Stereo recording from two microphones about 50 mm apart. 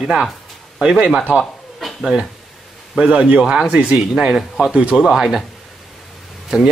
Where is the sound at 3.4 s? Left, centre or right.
Centre.